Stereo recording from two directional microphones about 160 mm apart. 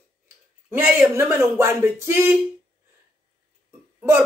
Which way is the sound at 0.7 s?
15° right (ahead or behind).